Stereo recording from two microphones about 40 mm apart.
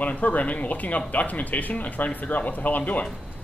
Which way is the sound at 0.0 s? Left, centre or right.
Left.